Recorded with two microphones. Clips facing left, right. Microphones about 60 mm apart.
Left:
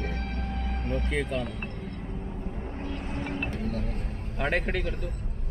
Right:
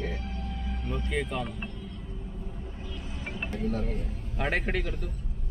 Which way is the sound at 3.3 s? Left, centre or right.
Left.